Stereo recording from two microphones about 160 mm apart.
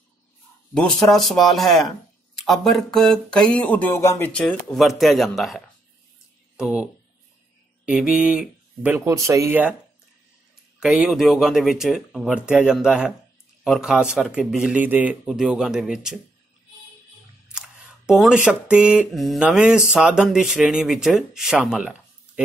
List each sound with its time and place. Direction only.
0.7 s speech: 5° left (ahead or behind)
4.3 s speech: 5° left (ahead or behind); by 9.8 s 10° right (ahead or behind)
10.8 s speech: 5° right (ahead or behind)
17.5 s speech: 5° right (ahead or behind)